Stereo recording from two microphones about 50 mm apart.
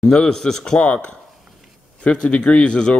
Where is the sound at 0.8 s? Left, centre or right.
Left.